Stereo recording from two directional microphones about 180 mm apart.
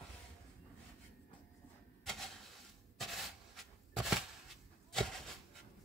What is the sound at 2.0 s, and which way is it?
Printer, centre (ahead or behind).